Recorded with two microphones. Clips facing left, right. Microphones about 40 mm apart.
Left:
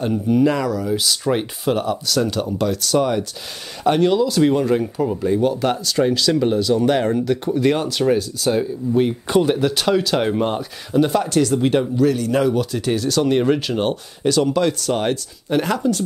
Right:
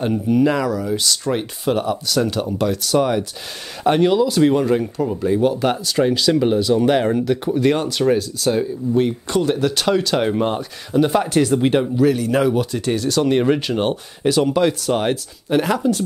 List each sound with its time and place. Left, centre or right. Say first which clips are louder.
0.3 s speech: even; centre
9.3 s speech: left 4 dB; centre
9.6 s speech: even; centre
11.1 s speech: right 1 dB; centre